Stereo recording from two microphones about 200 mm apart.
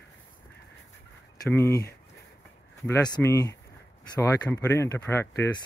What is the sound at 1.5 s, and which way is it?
Speech, 15° left (ahead or behind).